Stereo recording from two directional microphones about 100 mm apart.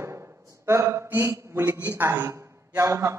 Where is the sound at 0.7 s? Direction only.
30° right (ahead or behind).